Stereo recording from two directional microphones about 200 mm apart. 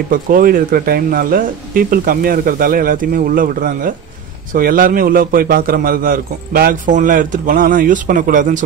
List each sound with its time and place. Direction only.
0.1 s a man's voice: 45° right (ahead or behind)